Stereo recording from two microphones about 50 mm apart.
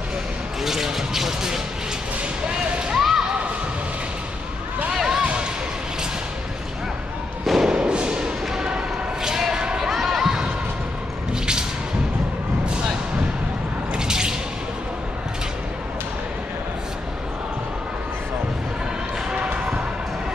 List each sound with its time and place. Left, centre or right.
0.7 s speech: centre
2.9 s a sound: centre
4.9 s basketball bounce: centre
5.2 s basketball bounce: right
7.4 s thump: centre
7.7 s thump: centre
9.8 s basketball bounce: centre
13.9 s drip: centre
19.3 s basketball bounce: right